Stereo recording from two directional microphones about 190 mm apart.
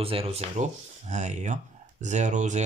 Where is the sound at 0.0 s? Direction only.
30° right (ahead or behind).